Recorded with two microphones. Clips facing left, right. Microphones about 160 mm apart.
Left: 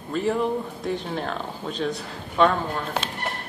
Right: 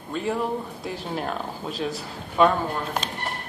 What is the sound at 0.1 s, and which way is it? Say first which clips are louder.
A man's voice: left 3 dB; centre (ahead or behind).